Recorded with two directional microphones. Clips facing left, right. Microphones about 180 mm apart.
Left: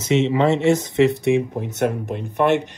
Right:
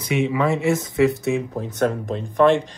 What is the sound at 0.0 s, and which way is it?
Speech, 25° left (ahead or behind).